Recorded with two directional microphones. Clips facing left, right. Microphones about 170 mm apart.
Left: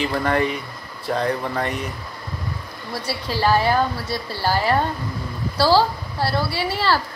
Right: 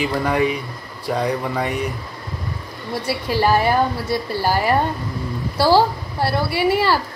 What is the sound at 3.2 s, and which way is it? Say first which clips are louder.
A woman's voice: right 1 dB; 15° right (ahead or behind).